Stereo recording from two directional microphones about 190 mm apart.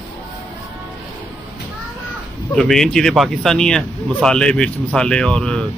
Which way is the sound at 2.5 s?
5° left (ahead or behind).